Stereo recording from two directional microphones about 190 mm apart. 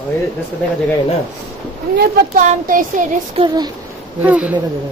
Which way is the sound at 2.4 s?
45° right (ahead or behind).